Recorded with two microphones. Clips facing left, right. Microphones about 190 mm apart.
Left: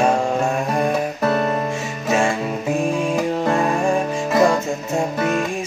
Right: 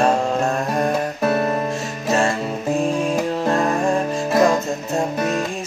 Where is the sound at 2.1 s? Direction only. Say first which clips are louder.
Even; 10° left (ahead or behind).